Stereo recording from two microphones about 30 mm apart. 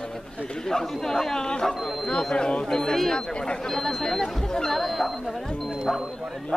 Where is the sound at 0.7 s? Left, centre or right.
Centre.